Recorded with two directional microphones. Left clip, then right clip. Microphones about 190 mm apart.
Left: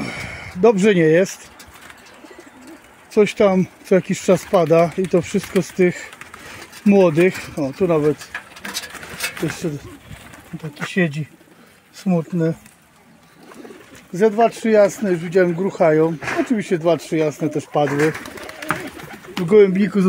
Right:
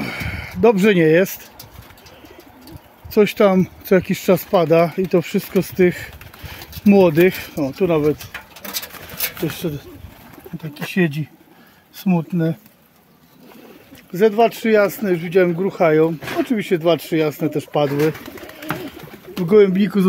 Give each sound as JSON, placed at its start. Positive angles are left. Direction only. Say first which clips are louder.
{"t": 0.0, "sound": "a sound", "louder": "right 2 dB", "side_deg": -5}
{"t": 3.1, "sound": "speech", "louder": "right 1 dB", "side_deg": -10}
{"t": 9.6, "sound": "speech", "louder": "even", "side_deg": 0}
{"t": 12.1, "sound": "speech", "louder": "left 1 dB", "side_deg": 5}
{"t": 14.1, "sound": "speech", "louder": "right 1 dB", "side_deg": -5}
{"t": 16.2, "sound": "speech", "louder": "left 1 dB", "side_deg": -35}
{"t": 16.4, "sound": "speech", "louder": "right 2 dB", "side_deg": 0}
{"t": 17.8, "sound": "speech", "louder": "even", "side_deg": -20}
{"t": 19.4, "sound": "speech", "louder": "even", "side_deg": -5}